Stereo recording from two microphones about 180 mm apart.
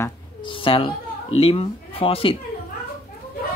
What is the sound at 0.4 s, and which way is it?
Speech, 30° left (ahead or behind).